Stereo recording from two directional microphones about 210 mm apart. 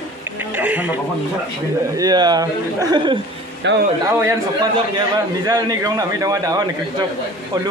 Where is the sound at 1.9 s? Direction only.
20° right (ahead or behind).